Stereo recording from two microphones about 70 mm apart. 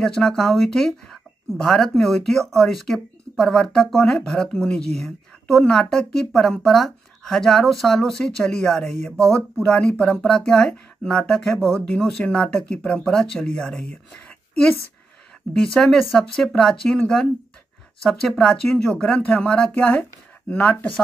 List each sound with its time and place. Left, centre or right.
0.0 s speech: centre
9.3 s a woman's voice: centre
15.5 s speech: centre